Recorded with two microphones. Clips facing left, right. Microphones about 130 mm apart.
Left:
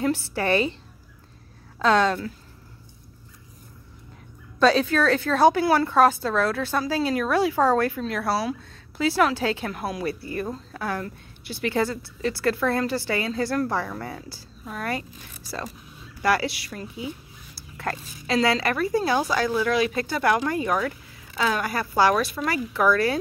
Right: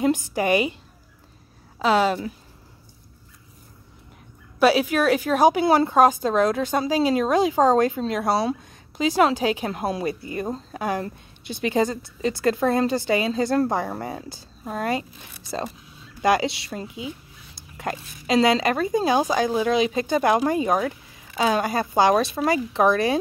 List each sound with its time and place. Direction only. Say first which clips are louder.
0.0 s a woman's voice: right 3 dB; 15° right (ahead or behind)
1.8 s a woman's voice: even; 10° right (ahead or behind)
4.6 s a woman's voice: right 1 dB; 10° right (ahead or behind)
14.6 s speech: right 5 dB; 30° right (ahead or behind)
16.2 s a woman's voice: right 3 dB; 20° right (ahead or behind)